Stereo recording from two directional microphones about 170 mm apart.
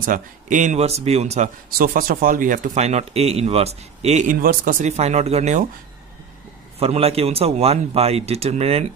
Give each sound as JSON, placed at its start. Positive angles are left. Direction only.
{"t": 0.0, "sound": "a man's voice", "side_deg": -50}
{"t": 1.7, "sound": "speech", "side_deg": -60}
{"t": 6.8, "sound": "a man's voice", "side_deg": -35}